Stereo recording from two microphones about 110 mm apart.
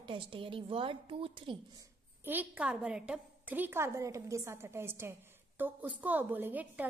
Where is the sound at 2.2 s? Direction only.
15° right (ahead or behind).